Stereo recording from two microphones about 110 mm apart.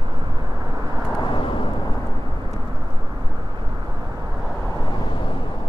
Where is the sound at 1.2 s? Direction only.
50° left (ahead or behind).